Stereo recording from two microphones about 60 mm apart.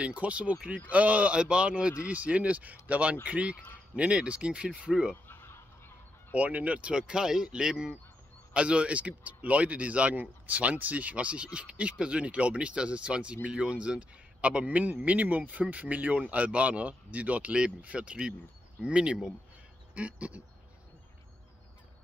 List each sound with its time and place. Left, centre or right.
0.0 s speech: right
5.1 s fowl: left
6.3 s speech: right